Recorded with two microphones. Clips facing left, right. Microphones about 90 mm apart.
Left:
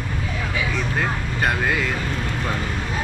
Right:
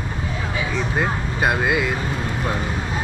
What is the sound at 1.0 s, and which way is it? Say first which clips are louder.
Speech: right 3 dB; 15° right (ahead or behind).